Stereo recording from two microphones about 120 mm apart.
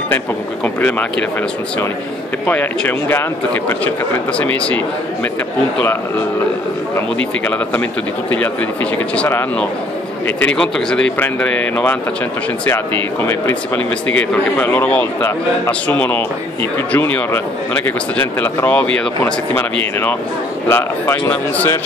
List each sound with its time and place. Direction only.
0.7 s speech: 15° left (ahead or behind)
2.4 s speech: 15° left (ahead or behind)
7.4 s speech: 15° left (ahead or behind)
8.9 s speech: 10° left (ahead or behind)